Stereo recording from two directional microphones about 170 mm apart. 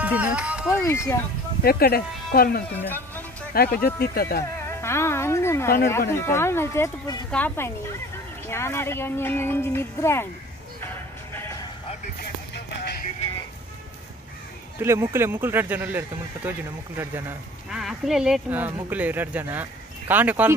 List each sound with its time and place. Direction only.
0.0 s speech: 10° right (ahead or behind)
0.7 s speech: 15° left (ahead or behind)
1.6 s speech: 65° left (ahead or behind)
2.7 s speech: 10° left (ahead or behind)
3.5 s speech: 65° left (ahead or behind)
4.6 s speech: 15° left (ahead or behind)
7.2 s speech: 10° left (ahead or behind)
11.3 s music: 15° left (ahead or behind)
12.5 s music: 75° left (ahead or behind)
14.8 s speech: 15° right (ahead or behind)
17.6 s speech: 5° right (ahead or behind)